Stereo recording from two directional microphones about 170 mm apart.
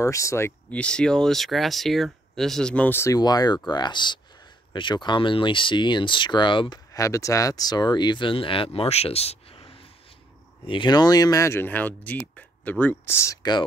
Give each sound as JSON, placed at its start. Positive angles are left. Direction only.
{"t": 0.0, "sound": "speech", "side_deg": 15}